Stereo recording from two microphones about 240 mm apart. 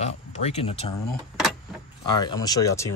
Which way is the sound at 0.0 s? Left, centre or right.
Left.